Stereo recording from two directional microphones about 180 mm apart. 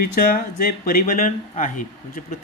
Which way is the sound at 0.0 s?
55° left (ahead or behind).